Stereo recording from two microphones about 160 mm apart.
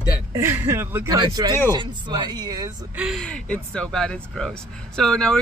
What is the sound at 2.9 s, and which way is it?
Speech, 5° right (ahead or behind).